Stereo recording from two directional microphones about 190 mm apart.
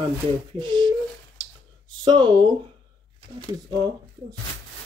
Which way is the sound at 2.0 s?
25° right (ahead or behind).